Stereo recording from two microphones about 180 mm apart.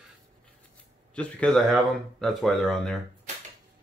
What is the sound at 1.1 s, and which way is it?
Speech, 5° left (ahead or behind).